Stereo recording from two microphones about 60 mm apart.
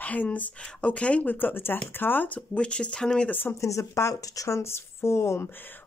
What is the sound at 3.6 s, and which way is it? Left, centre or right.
Speech, left.